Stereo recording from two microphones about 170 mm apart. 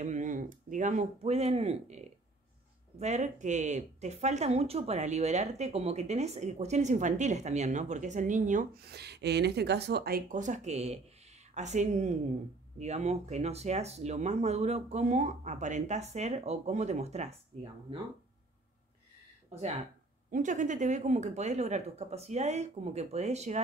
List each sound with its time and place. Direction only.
0.0 s a woman's voice: 45° right (ahead or behind)
8.8 s a woman's voice: 75° right (ahead or behind); by 17.4 s 40° right (ahead or behind)
20.2 s speech: 50° right (ahead or behind)